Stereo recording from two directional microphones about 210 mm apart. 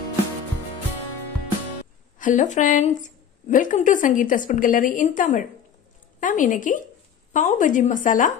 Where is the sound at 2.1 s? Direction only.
40° left (ahead or behind).